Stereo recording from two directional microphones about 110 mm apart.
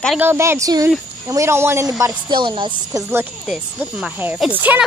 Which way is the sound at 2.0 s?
40° right (ahead or behind).